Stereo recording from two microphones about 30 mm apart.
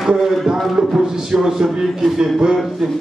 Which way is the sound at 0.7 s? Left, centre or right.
Right.